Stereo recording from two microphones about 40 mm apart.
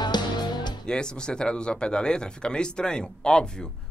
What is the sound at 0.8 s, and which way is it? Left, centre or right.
Speech, centre.